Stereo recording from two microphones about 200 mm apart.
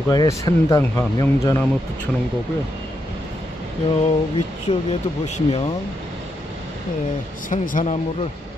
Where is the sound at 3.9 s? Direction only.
30° left (ahead or behind).